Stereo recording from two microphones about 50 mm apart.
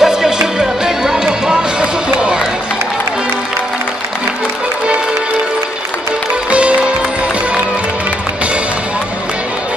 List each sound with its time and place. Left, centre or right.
0.0 s music: centre
6.5 s music: right